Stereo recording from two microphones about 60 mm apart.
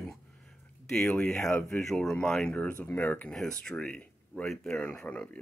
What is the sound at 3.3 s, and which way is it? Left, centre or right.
A man's voice, centre.